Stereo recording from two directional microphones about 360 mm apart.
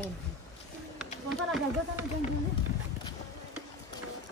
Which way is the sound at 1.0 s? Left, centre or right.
Centre.